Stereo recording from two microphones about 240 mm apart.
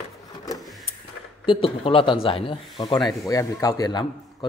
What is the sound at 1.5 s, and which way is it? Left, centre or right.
Speech, left.